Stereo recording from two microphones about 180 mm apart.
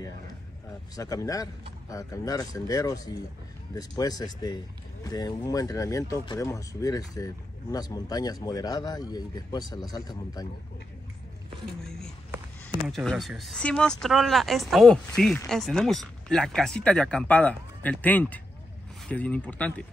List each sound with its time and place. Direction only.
0.9 s speech: 20° left (ahead or behind)
11.8 s speech: 5° left (ahead or behind)